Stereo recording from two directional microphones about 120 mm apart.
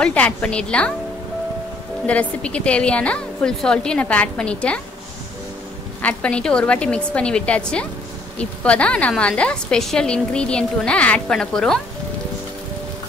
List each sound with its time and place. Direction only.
0.0 s a woman's voice: 10° left (ahead or behind)
2.0 s a woman's voice: 10° left (ahead or behind)
6.0 s a woman's voice: 10° left (ahead or behind)